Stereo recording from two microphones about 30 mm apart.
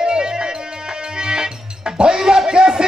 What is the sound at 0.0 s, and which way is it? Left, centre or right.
Music, right.